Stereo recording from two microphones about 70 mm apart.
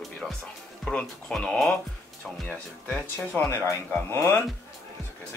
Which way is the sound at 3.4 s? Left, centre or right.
Left.